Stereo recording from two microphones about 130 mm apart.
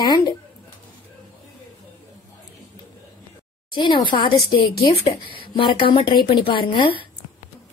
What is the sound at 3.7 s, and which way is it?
A woman's voice, 35° left (ahead or behind).